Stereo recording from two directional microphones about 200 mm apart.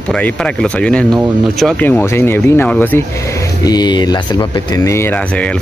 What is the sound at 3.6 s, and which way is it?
Speech, 20° left (ahead or behind).